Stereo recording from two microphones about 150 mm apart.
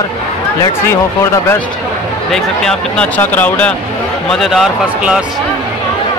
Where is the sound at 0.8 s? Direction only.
15° left (ahead or behind).